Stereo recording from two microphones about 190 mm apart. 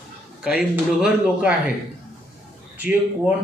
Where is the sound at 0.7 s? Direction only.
5° right (ahead or behind).